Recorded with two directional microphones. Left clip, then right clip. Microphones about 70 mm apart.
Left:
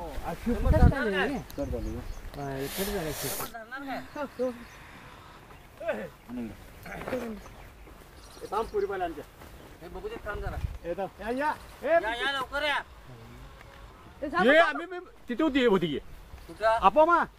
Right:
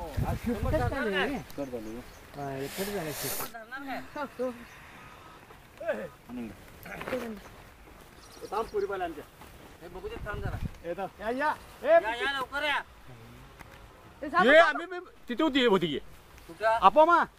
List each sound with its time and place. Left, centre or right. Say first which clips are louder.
0.2 s speech: left 1 dB; centre
2.5 s speech: left 2 dB; centre
4.1 s speech: left 2 dB; right
5.9 s speech: even; centre
7.0 s speech: even; right
8.5 s speech: left 1 dB; right
9.9 s speech: left 2 dB; centre
10.9 s speech: left 1 dB; right
12.0 s speech: even; centre
14.2 s speech: right 1 dB; right
16.5 s speech: left 1 dB; centre
16.8 s speech: right 2 dB; right